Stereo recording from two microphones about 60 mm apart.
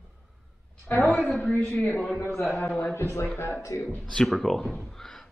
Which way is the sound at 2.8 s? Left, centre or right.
Left.